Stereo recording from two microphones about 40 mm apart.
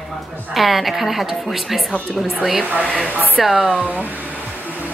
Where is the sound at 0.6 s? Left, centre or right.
Centre.